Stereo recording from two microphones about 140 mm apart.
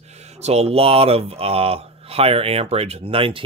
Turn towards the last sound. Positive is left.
turn(degrees=-40)  # may be behind; listen again after turning